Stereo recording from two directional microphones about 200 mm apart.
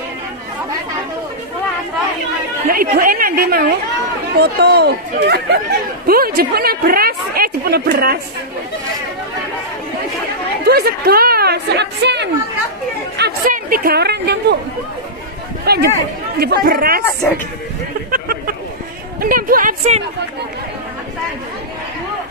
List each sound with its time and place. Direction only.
2.7 s a woman's voice: 45° right (ahead or behind)
10.6 s a woman's voice: 50° right (ahead or behind)
13.2 s a woman's voice: 45° right (ahead or behind)
15.6 s a woman's voice: 50° right (ahead or behind)
18.1 s a sound: 45° right (ahead or behind)
19.2 s a woman's voice: 45° right (ahead or behind)